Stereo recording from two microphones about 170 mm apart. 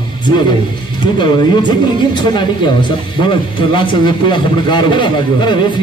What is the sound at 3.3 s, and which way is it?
Speech, 30° left (ahead or behind).